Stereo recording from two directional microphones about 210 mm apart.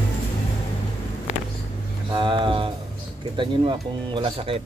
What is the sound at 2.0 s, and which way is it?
Speech, 20° right (ahead or behind).